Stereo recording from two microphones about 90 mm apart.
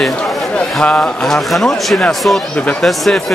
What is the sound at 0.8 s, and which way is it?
A man's voice, 15° left (ahead or behind).